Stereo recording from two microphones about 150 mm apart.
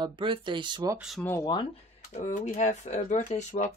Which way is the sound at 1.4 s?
30° left (ahead or behind).